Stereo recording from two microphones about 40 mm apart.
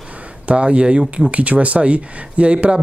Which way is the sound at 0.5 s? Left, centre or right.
Right.